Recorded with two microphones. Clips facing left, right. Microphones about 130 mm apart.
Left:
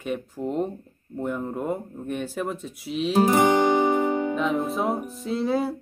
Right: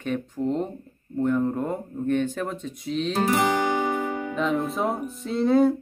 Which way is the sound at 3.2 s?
20° left (ahead or behind).